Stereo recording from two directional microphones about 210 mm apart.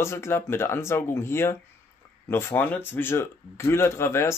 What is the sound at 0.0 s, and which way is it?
Speech, 10° left (ahead or behind).